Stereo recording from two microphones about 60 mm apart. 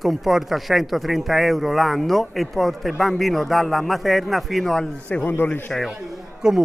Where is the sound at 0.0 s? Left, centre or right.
Centre.